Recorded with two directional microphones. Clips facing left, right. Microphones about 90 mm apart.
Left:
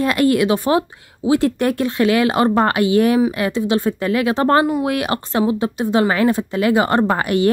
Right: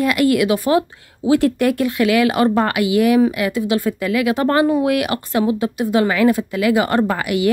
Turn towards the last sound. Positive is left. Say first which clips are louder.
# left 2 dB
turn(degrees=35)  # may be behind; listen again after turning